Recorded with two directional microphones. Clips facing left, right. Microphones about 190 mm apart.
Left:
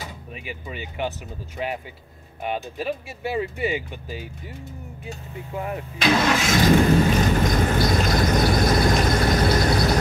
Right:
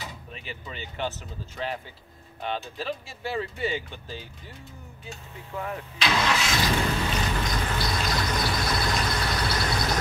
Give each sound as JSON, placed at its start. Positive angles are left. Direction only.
{"t": 0.3, "sound": "speech", "side_deg": 10}
{"t": 5.9, "sound": "vehicle", "side_deg": 45}